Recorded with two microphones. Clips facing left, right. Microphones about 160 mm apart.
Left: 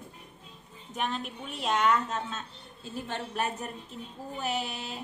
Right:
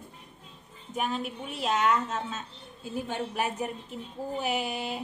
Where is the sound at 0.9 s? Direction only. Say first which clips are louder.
Right 2 dB; 5° right (ahead or behind).